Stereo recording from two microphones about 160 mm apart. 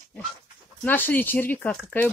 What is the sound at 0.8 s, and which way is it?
Speech, 10° left (ahead or behind).